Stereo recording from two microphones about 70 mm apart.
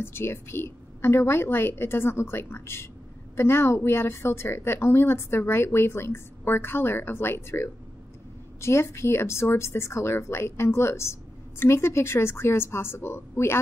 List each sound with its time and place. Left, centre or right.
0.0 s a woman's voice: left